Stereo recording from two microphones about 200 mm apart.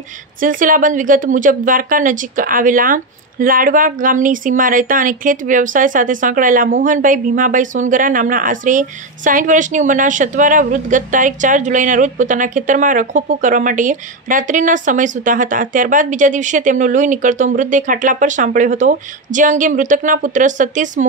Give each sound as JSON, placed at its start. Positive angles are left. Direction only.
{"t": 0.4, "sound": "a woman's voice", "side_deg": -40}